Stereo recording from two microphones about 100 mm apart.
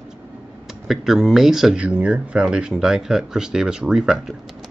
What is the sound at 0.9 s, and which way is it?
Speech, 5° right (ahead or behind).